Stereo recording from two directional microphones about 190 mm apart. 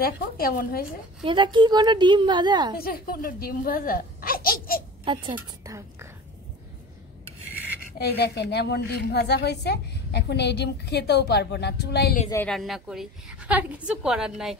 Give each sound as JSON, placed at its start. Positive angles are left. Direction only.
{"t": 0.0, "sound": "speech", "side_deg": 50}
{"t": 1.2, "sound": "a woman's voice", "side_deg": -25}
{"t": 2.8, "sound": "speech", "side_deg": 50}
{"t": 5.0, "sound": "speech", "side_deg": -25}
{"t": 5.7, "sound": "whispering", "side_deg": -15}
{"t": 8.0, "sound": "a woman's voice", "side_deg": 60}
{"t": 12.4, "sound": "a woman's voice", "side_deg": 0}